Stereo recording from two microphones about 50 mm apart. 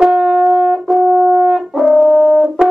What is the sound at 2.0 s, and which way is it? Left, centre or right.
French horn, centre.